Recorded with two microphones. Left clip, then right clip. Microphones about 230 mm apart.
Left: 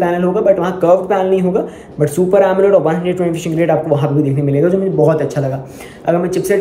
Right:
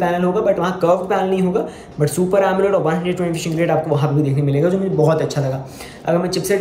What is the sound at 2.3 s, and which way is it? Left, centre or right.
Speech, centre.